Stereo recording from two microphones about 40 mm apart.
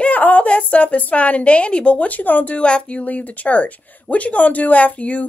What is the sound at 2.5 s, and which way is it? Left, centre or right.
Speech, left.